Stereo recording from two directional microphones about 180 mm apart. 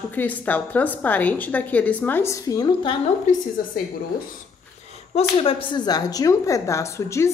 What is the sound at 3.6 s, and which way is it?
Speech, 50° left (ahead or behind).